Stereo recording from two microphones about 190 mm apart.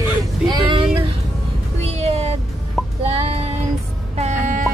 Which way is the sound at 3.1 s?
35° right (ahead or behind).